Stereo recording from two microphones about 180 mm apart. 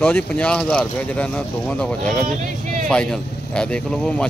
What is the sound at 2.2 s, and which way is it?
Speech, 45° right (ahead or behind).